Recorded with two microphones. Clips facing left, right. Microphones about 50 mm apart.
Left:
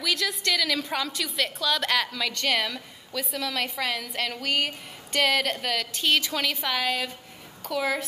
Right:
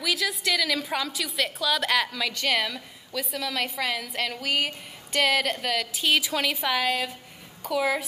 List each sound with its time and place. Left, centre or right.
0.0 s a woman's voice: centre